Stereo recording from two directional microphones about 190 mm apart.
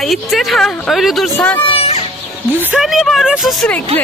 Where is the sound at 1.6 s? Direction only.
30° left (ahead or behind).